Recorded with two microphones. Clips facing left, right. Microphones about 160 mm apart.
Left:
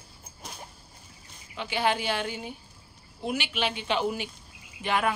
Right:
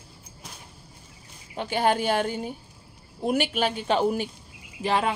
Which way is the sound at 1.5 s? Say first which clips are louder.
Right 4 dB; 45° right (ahead or behind).